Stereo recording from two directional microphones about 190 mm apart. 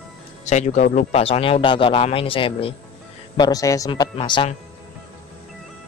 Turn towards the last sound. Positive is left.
turn(degrees=25)  # may be behind; listen again after turning